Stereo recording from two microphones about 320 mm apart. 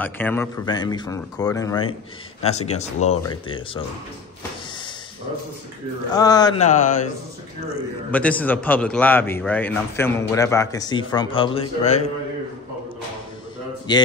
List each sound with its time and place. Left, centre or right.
0.0 s speech: centre
6.1 s speech: centre
8.1 s speech: centre; by 12.1 s left